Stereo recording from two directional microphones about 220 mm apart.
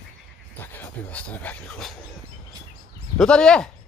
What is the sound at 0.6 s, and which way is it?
Speech, 10° left (ahead or behind).